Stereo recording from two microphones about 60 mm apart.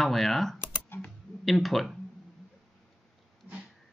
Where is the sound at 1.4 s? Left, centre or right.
Centre.